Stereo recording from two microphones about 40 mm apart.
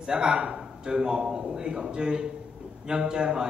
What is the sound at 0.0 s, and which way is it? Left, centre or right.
A man's voice, centre.